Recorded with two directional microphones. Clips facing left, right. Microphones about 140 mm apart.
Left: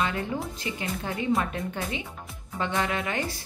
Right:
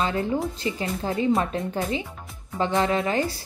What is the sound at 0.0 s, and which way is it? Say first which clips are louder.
Speech: right 4 dB; 30° right (ahead or behind).